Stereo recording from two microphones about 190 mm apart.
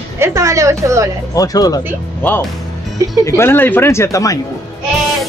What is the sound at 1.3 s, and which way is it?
Speech, 20° left (ahead or behind).